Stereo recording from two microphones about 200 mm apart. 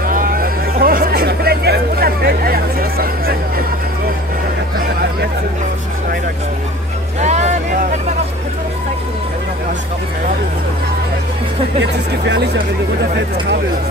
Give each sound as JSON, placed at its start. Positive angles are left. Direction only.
{"t": 0.0, "sound": "a sound", "side_deg": -45}
{"t": 7.2, "sound": "music", "side_deg": -35}
{"t": 11.8, "sound": "speech", "side_deg": -60}